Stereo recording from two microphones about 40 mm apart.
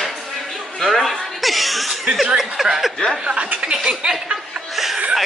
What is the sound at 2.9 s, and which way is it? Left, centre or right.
Speech, centre.